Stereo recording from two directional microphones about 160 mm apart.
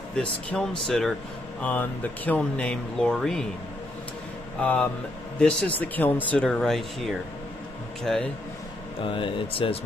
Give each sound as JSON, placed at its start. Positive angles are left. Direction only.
{"t": 0.1, "sound": "speech", "side_deg": 5}
{"t": 4.6, "sound": "speech", "side_deg": 10}
{"t": 9.0, "sound": "speech", "side_deg": 30}